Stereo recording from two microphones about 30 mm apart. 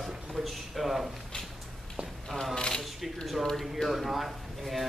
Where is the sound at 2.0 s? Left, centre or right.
Right.